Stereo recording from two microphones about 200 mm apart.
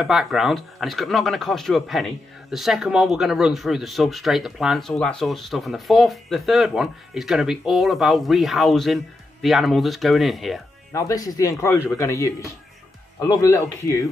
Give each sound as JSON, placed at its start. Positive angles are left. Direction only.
{"t": 0.0, "sound": "speech", "side_deg": 0}
{"t": 10.9, "sound": "speech", "side_deg": 15}